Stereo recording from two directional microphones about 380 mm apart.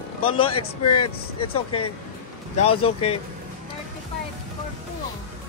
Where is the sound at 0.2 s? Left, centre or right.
Centre.